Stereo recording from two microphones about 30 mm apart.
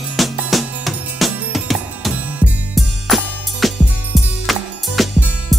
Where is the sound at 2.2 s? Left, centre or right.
Right.